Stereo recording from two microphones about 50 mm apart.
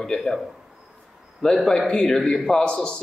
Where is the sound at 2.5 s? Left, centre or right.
Centre.